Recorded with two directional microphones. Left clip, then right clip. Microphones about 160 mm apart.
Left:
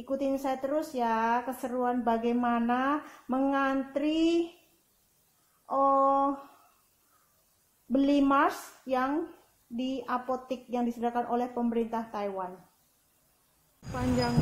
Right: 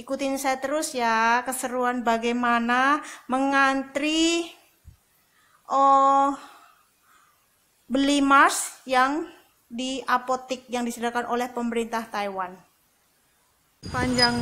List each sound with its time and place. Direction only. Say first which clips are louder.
0.0 s speech: right 4 dB; 15° right (ahead or behind)
5.7 s speech: right 7 dB; 20° right (ahead or behind)
7.9 s speech: right 6 dB; 20° right (ahead or behind)